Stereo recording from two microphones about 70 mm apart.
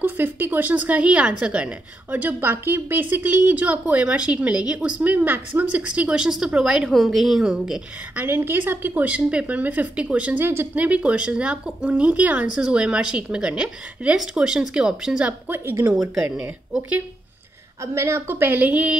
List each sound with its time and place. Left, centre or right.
0.0 s a woman's voice: right; by 6.9 s centre
6.9 s a woman's voice: centre
8.2 s a woman's voice: right
10.4 s a woman's voice: right
10.7 s a woman's voice: centre
15.4 s a woman's voice: right
17.9 s a woman's voice: right